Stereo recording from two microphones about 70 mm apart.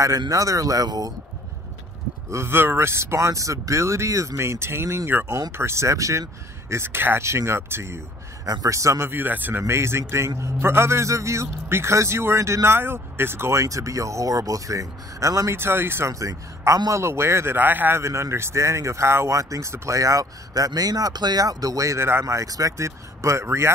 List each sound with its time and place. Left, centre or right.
0.3 s speech: right
2.3 s a man's voice: right
9.1 s a man's voice: right
15.6 s speech: right
16.1 s a man's voice: right
17.0 s speech: right
18.0 s a man's voice: right
22.2 s a man's voice: right